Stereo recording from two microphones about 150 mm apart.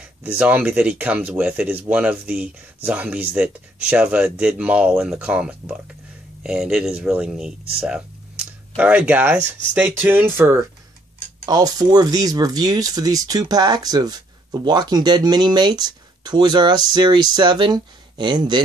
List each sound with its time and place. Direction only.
0.2 s speech: 10° right (ahead or behind)
8.7 s speech: 10° right (ahead or behind); by 18.6 s 30° right (ahead or behind)